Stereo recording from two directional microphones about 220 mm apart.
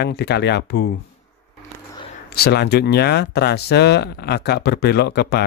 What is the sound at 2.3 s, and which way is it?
Speech, 45° left (ahead or behind).